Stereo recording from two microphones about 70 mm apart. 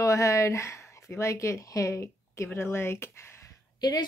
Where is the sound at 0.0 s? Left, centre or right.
Left.